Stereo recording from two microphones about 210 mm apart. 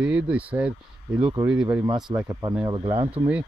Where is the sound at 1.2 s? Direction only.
15° right (ahead or behind).